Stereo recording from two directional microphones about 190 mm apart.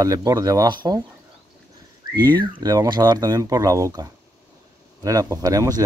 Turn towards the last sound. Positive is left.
turn(degrees=-20)  # may be behind; listen again after turning